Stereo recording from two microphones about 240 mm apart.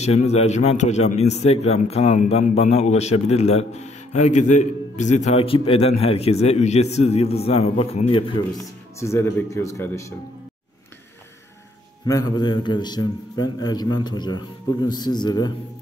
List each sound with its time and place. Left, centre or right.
0.0 s a man's voice: left
9.0 s a man's voice: centre
12.1 s a man's voice: centre